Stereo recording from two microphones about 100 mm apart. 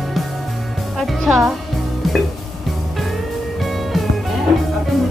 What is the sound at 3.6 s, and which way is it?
Music, centre (ahead or behind).